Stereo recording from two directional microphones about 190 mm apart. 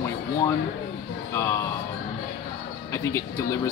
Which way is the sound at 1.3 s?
15° left (ahead or behind).